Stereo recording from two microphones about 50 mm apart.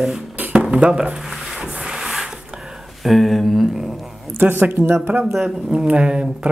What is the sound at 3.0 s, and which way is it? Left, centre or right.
Speech, centre.